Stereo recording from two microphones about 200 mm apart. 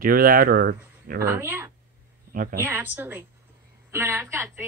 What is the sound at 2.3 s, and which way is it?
Speech, 45° right (ahead or behind).